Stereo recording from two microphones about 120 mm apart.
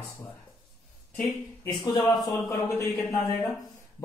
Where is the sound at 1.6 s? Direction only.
35° left (ahead or behind).